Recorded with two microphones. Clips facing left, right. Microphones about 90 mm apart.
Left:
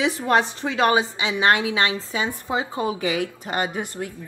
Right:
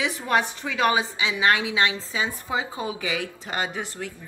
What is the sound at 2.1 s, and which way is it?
Speech, 55° left (ahead or behind).